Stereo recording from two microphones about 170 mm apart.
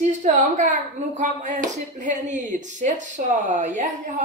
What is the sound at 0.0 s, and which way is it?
A woman's voice, 45° right (ahead or behind).